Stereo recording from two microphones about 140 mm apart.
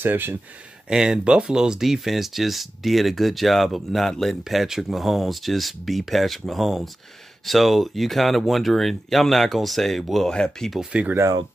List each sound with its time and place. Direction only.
0.0 s speech: 15° right (ahead or behind)
11.1 s speech: 20° right (ahead or behind)